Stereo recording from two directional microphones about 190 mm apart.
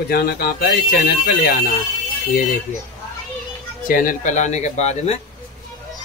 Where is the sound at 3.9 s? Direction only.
45° left (ahead or behind).